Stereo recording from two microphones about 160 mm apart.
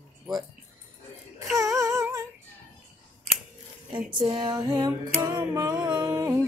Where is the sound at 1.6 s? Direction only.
20° right (ahead or behind).